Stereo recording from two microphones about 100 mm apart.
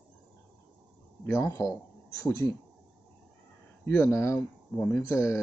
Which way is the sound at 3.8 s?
25° left (ahead or behind).